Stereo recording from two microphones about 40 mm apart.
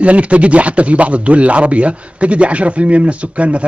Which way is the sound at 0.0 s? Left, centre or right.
Right.